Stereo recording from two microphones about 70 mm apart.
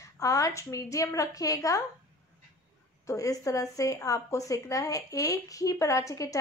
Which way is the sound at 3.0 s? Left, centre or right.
Left.